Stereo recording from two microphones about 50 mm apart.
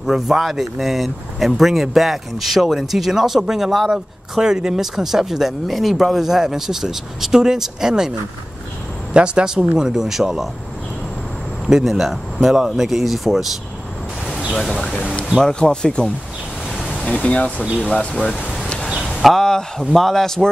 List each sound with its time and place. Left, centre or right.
0.0 s speech: centre
9.1 s speech: centre
11.6 s speech: centre
14.5 s speech: centre
17.0 s speech: left
19.4 s speech: centre